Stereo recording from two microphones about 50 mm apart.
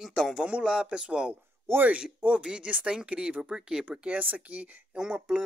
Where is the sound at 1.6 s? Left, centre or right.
Right.